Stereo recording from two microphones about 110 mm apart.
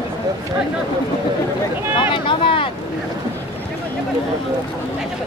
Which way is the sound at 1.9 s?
50° left (ahead or behind).